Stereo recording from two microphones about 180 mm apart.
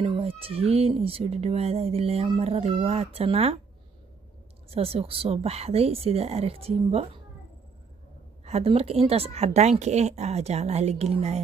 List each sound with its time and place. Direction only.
0.0 s speech: 30° right (ahead or behind)
4.6 s speech: 35° right (ahead or behind)
8.5 s speech: 35° right (ahead or behind)